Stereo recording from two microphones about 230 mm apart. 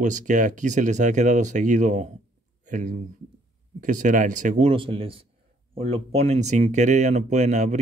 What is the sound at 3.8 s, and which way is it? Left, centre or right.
Speech, right.